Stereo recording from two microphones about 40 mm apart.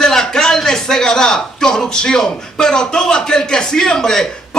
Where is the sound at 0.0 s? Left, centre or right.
Centre.